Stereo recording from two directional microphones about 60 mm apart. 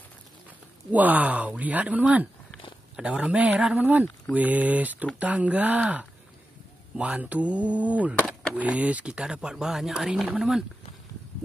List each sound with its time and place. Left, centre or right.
0.9 s speech: right; by 10.2 s centre